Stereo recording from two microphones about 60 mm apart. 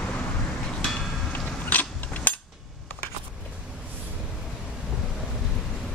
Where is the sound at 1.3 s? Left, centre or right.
Left.